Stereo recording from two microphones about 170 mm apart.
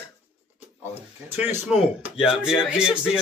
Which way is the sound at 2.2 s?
5° right (ahead or behind).